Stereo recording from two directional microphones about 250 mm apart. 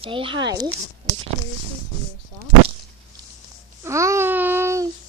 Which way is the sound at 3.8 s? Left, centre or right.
Centre.